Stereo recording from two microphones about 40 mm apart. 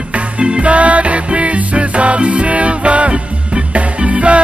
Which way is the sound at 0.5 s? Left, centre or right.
Right.